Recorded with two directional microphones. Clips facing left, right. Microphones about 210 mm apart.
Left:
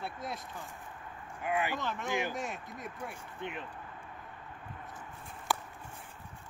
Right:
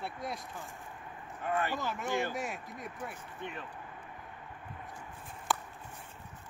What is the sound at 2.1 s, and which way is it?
Speech, 15° left (ahead or behind).